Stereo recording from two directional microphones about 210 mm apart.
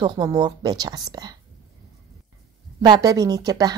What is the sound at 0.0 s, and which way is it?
A woman's voice, 20° right (ahead or behind).